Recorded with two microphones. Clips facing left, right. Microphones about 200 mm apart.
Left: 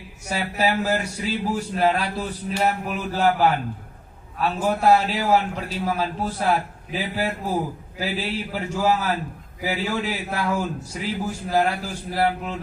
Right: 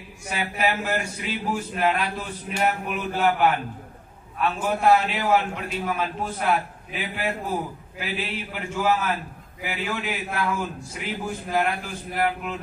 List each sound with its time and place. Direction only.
0.3 s a man's voice: 35° left (ahead or behind)